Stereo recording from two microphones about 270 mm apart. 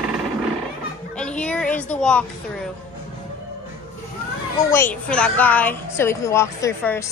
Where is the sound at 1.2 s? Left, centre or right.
Centre.